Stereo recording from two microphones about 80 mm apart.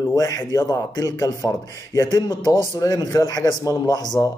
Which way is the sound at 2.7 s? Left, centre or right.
Left.